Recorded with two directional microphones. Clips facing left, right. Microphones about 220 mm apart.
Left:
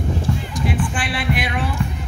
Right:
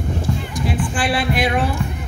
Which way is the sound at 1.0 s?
35° right (ahead or behind).